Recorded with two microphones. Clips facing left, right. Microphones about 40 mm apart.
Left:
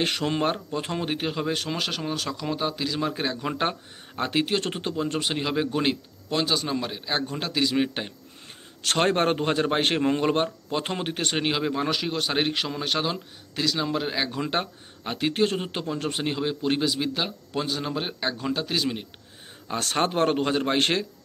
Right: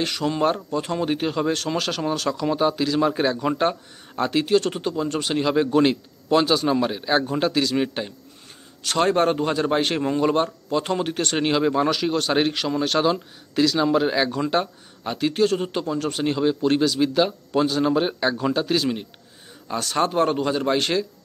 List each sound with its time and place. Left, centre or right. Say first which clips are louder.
0.0 s a man's voice: right 1 dB; left
0.7 s speech: right 5 dB; left; by 3.5 s centre
4.2 s speech: right 5 dB; left
5.3 s a man's voice: right 6 dB; centre
7.6 s speech: right 1 dB; centre
8.8 s a man's voice: right 3 dB; left
11.3 s speech: right 7 dB; centre
14.5 s speech: right 5 dB; left; by 18.9 s centre
19.8 s a man's voice: right 3 dB; left